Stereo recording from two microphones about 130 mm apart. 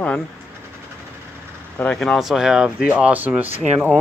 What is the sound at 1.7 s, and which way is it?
Speech, 5° left (ahead or behind).